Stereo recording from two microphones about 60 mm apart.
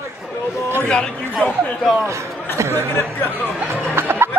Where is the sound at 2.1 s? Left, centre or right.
Right.